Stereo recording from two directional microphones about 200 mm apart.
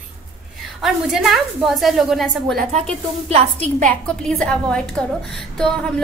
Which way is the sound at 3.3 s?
30° right (ahead or behind).